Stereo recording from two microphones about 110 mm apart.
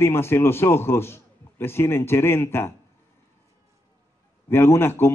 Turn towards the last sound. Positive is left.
turn(degrees=20)  # may be behind; listen again after turning